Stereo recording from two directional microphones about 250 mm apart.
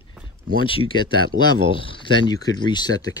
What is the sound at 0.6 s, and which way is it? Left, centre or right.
Speech, centre.